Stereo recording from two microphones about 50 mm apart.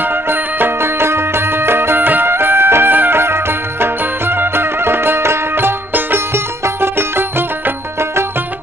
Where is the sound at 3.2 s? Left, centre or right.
Right.